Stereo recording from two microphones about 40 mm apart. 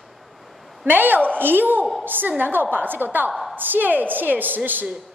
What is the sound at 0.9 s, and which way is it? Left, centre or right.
A woman's voice, right.